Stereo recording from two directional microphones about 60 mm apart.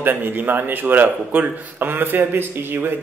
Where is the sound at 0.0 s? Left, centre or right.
Right.